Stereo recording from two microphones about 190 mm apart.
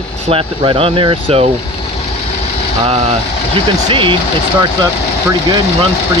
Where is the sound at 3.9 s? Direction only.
25° right (ahead or behind).